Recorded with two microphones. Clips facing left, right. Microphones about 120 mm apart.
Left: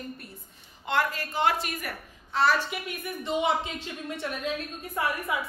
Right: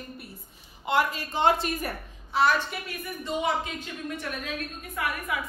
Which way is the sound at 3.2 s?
25° left (ahead or behind).